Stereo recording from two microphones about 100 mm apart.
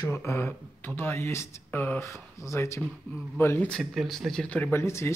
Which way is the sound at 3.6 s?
5° left (ahead or behind).